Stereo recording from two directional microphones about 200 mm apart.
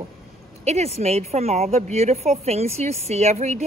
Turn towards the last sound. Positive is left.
turn(degrees=-35)  # may be behind; listen again after turning